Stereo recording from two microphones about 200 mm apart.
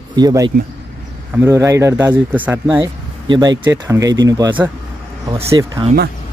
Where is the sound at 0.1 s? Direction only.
20° right (ahead or behind).